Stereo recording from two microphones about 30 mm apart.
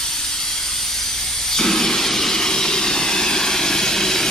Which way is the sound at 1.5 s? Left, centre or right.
Centre.